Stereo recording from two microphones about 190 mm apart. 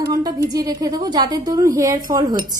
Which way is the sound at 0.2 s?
20° right (ahead or behind).